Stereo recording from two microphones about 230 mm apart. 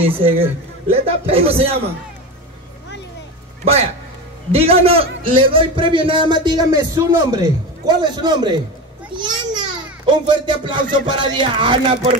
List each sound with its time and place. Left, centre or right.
0.0 s a man's voice: right
4.5 s a man's voice: right
9.1 s a sound: centre
10.0 s a man's voice: centre